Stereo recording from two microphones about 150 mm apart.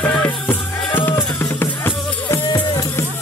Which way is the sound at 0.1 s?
10° left (ahead or behind).